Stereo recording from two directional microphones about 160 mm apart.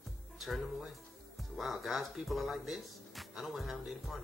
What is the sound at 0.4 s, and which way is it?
Speech, centre (ahead or behind).